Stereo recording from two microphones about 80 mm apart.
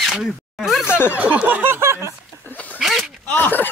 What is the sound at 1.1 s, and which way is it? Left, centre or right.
Speech, centre.